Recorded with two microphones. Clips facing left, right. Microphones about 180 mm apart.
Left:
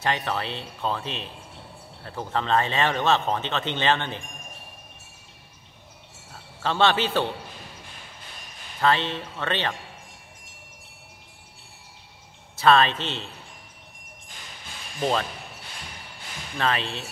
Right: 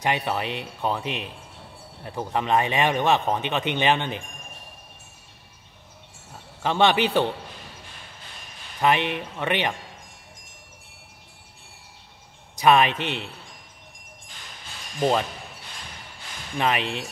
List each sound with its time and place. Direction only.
0.0 s speech: 15° right (ahead or behind)
6.3 s a man's voice: 15° right (ahead or behind)
8.8 s speech: 15° right (ahead or behind)
12.5 s speech: 15° right (ahead or behind)
15.0 s speech: 15° right (ahead or behind)
16.5 s speech: 15° right (ahead or behind)